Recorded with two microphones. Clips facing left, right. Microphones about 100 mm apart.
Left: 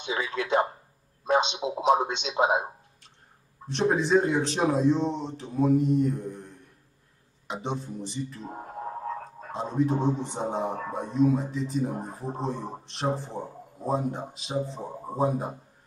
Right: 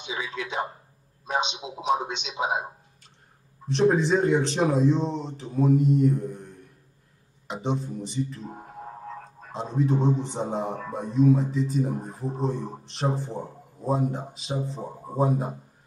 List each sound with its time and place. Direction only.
0.0 s a man's voice: 55° left (ahead or behind)
3.6 s a man's voice: centre (ahead or behind)
7.4 s a man's voice: centre (ahead or behind)
9.5 s a man's voice: centre (ahead or behind)